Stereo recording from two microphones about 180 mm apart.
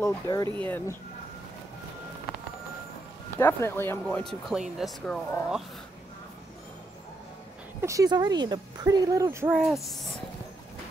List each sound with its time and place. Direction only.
0.0 s speech: 15° left (ahead or behind)
3.3 s speech: 15° left (ahead or behind)
7.8 s speech: 20° right (ahead or behind)
9.5 s speech: centre (ahead or behind)